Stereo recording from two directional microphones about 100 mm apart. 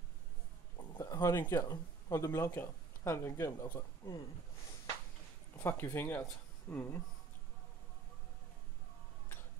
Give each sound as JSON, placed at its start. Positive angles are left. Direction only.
{"t": 0.7, "sound": "a sound", "side_deg": 35}
{"t": 1.4, "sound": "speech", "side_deg": 40}
{"t": 5.6, "sound": "speech", "side_deg": 25}